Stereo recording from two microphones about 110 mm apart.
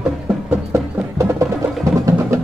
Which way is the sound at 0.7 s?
25° right (ahead or behind).